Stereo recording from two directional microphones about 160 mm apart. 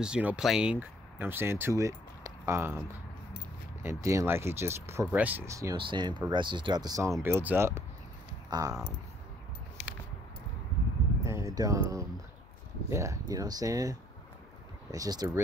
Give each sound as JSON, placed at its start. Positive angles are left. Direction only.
{"t": 0.0, "sound": "speech", "side_deg": -5}
{"t": 3.8, "sound": "speech", "side_deg": -20}
{"t": 5.8, "sound": "speech", "side_deg": -30}
{"t": 11.2, "sound": "speech", "side_deg": -20}